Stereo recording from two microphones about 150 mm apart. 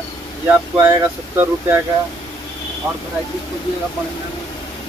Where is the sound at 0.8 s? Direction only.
15° right (ahead or behind).